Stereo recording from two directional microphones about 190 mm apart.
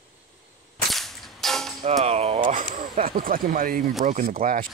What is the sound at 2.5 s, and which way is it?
Speech, 45° right (ahead or behind).